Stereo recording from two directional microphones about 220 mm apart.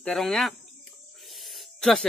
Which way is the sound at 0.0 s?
Centre (ahead or behind).